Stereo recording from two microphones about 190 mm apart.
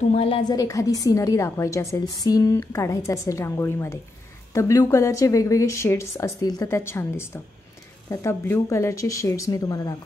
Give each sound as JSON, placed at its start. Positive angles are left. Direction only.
{"t": 0.1, "sound": "a woman's voice", "side_deg": 30}